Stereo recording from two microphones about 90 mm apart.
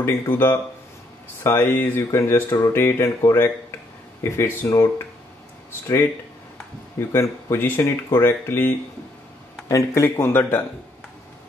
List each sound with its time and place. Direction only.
0.0 s speech: 25° left (ahead or behind)
7.0 s speech: 30° left (ahead or behind)